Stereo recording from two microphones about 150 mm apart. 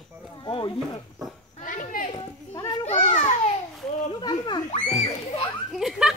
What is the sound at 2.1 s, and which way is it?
Speech, 25° left (ahead or behind).